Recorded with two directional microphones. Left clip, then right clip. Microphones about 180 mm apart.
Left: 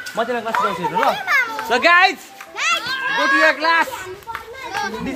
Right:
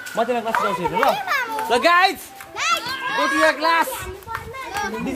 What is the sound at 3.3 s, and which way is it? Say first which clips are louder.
Speech: left 2 dB; 10° left (ahead or behind).